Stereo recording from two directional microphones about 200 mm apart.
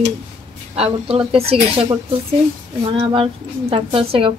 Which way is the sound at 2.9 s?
25° right (ahead or behind).